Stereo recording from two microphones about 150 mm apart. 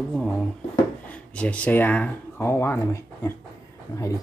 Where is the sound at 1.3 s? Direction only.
10° left (ahead or behind).